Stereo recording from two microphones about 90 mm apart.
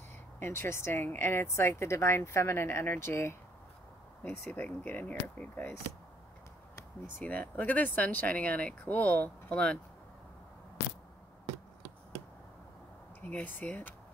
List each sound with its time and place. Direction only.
0.4 s speech: 30° left (ahead or behind)
4.2 s speech: 20° left (ahead or behind)
7.2 s speech: 20° left (ahead or behind)
13.2 s speech: 15° left (ahead or behind)